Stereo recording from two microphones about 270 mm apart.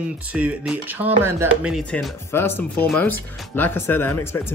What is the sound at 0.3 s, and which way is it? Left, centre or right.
Speech, centre.